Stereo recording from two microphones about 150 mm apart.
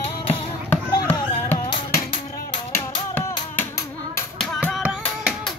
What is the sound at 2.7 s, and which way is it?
Music, 15° left (ahead or behind).